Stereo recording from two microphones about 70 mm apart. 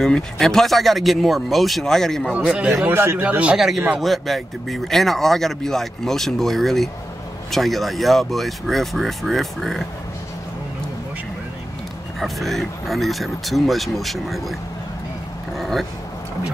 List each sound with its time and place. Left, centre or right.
0.0 s speech: centre
2.9 s a man's voice: right
3.3 s a man's voice: centre
3.5 s speech: centre
12.2 s speech: centre
15.5 s vehicle: centre